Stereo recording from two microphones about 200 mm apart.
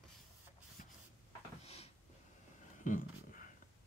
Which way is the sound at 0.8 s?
40° left (ahead or behind).